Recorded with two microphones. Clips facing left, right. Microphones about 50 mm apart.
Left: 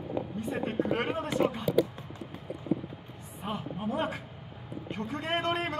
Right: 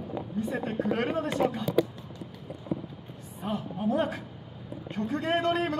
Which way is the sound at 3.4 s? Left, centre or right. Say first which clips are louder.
Right 3 dB; left.